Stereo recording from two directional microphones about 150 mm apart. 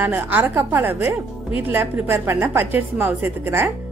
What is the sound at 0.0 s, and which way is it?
A woman's voice, 10° right (ahead or behind).